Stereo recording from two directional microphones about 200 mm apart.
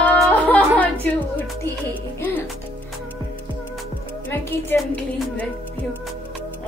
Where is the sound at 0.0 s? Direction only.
5° left (ahead or behind).